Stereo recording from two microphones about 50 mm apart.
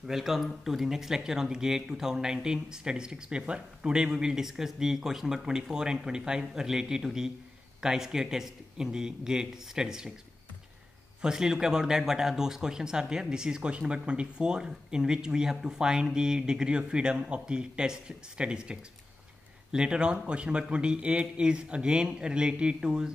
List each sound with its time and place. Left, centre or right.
0.0 s speech: centre
11.1 s a man's voice: centre